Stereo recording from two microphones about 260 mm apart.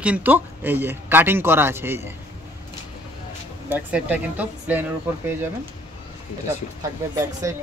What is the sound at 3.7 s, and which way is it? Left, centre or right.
Speech, centre.